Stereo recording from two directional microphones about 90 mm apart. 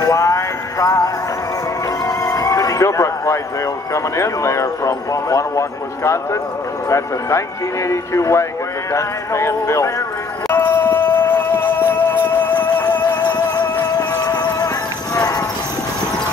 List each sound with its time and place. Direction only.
0.0 s music: 35° left (ahead or behind)
2.0 s a sound: 40° left (ahead or behind)
3.9 s speech: 35° left (ahead or behind)
10.5 s music: 25° left (ahead or behind)
13.1 s music: 55° left (ahead or behind)
13.9 s clip-clop: 45° left (ahead or behind)